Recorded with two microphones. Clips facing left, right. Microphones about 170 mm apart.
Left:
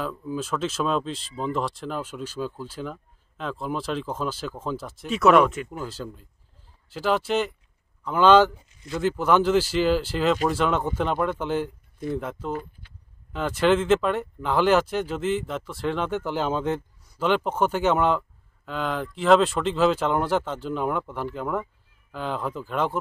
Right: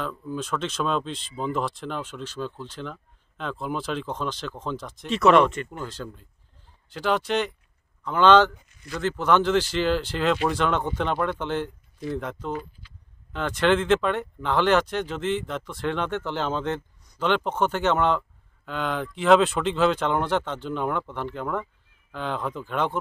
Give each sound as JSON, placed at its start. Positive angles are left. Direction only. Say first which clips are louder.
{"t": 0.0, "sound": "speech", "louder": "left 1 dB", "side_deg": 5}
{"t": 8.5, "sound": "a sound", "louder": "left 3 dB", "side_deg": 25}
{"t": 9.0, "sound": "speech", "louder": "left 1 dB", "side_deg": 10}